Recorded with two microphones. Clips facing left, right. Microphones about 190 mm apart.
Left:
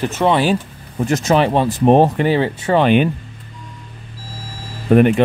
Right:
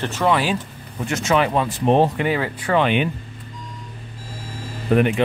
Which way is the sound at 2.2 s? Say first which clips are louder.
Left 6 dB; 30° left (ahead or behind).